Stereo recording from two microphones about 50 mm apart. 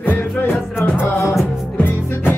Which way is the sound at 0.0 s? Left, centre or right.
Left.